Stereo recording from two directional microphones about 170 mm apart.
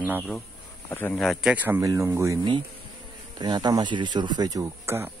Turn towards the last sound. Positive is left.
turn(degrees=-15)  # may be behind; listen again after turning